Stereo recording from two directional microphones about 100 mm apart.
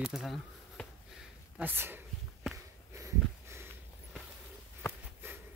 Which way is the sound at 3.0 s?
30° right (ahead or behind).